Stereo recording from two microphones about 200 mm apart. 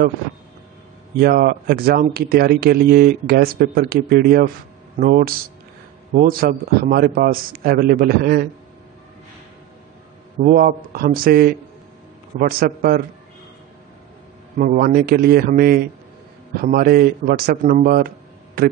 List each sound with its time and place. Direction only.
1.2 s speech: 50° right (ahead or behind)
10.4 s speech: 45° right (ahead or behind)
14.6 s a man's voice: 45° right (ahead or behind)